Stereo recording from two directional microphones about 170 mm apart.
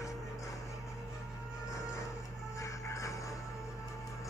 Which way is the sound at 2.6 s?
20° left (ahead or behind).